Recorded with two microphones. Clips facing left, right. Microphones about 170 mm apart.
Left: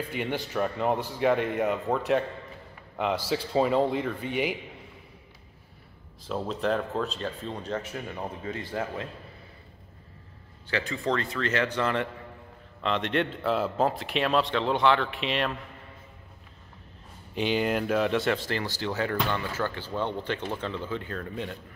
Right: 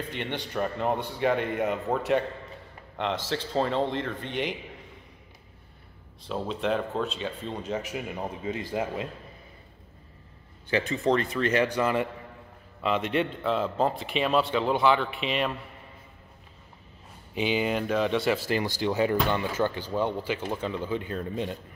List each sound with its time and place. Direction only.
0.0 s a man's voice: 5° left (ahead or behind)
6.2 s a man's voice: centre (ahead or behind); by 9.1 s 15° right (ahead or behind)
10.7 s a man's voice: 20° right (ahead or behind); by 15.5 s centre (ahead or behind)
17.4 s a man's voice: centre (ahead or behind); by 21.5 s 20° right (ahead or behind)